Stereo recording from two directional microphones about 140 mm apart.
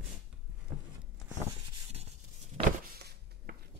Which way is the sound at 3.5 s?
90° right.